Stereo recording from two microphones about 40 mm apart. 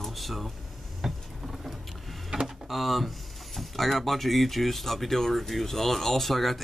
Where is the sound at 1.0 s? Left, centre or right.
Centre.